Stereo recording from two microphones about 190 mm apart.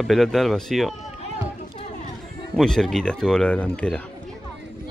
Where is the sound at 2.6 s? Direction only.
Centre (ahead or behind).